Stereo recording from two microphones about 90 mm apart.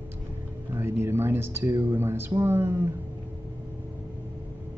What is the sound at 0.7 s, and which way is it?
Speech, 25° right (ahead or behind).